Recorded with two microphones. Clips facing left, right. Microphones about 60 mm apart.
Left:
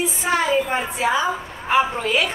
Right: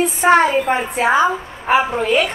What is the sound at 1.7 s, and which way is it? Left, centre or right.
Speech, right.